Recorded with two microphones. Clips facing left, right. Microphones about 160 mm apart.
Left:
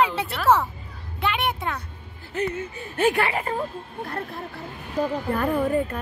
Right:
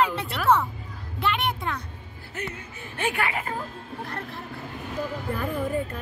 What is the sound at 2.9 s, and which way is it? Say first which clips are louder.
Speech: left 6 dB; 40° left (ahead or behind).